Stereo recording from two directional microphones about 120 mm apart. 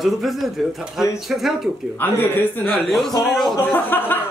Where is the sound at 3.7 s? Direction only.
15° left (ahead or behind).